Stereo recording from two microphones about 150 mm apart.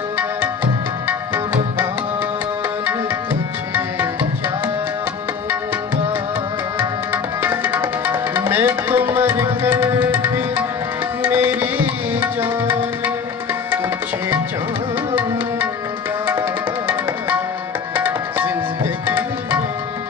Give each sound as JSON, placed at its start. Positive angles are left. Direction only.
{"t": 1.0, "sound": "music", "side_deg": -10}
{"t": 3.7, "sound": "music", "side_deg": -15}
{"t": 6.8, "sound": "tabla", "side_deg": -15}
{"t": 9.3, "sound": "music", "side_deg": -20}
{"t": 10.1, "sound": "tabla", "side_deg": -15}
{"t": 16.3, "sound": "tabla", "side_deg": -15}